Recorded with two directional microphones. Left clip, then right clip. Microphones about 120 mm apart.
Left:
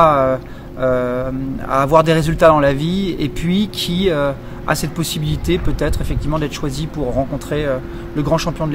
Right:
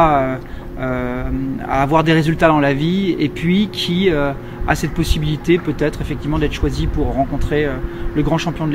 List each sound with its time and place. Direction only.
0.0 s speech: 40° left (ahead or behind)